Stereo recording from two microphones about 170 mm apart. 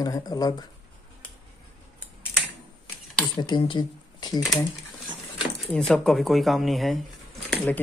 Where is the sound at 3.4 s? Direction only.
25° left (ahead or behind).